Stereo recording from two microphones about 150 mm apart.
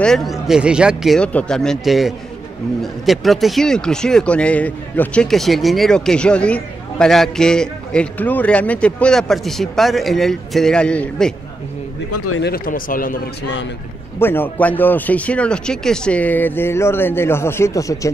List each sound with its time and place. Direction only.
0.0 s speech: centre (ahead or behind)
12.4 s speech: 75° left (ahead or behind)
14.2 s speech: 15° left (ahead or behind)